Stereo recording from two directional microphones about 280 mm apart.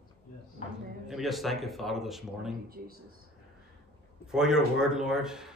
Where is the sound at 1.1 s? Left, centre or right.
Centre.